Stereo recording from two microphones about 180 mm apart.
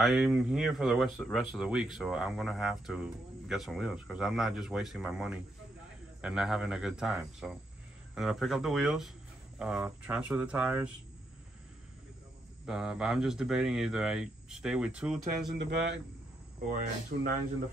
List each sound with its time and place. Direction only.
0.0 s speech: 5° right (ahead or behind)
12.6 s speech: 5° right (ahead or behind)
17.1 s speech: 60° right (ahead or behind)